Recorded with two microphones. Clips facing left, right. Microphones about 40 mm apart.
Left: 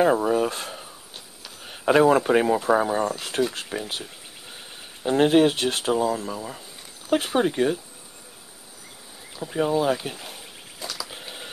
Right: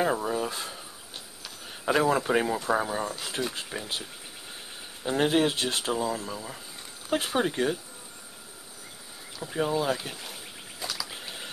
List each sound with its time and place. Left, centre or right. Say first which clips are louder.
0.0 s speech: left 7 dB; centre
0.4 s a sound: left 6 dB; left
1.7 s speech: left 7 dB; left
3.1 s speech: left 7 dB; left
3.6 s speech: left 5 dB; centre
5.0 s speech: left 6 dB; centre
5.6 s speech: left 5 dB; left
6.1 s speech: left 4 dB; centre
9.4 s speech: left 5 dB; centre
10.8 s a sound: left 1 dB; centre
11.1 s typing: left 1 dB; centre